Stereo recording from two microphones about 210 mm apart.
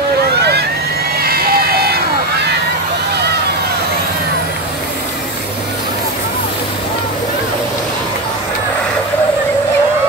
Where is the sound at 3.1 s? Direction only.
50° right (ahead or behind).